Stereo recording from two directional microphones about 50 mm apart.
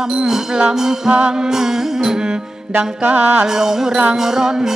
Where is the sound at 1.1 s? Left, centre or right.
Right.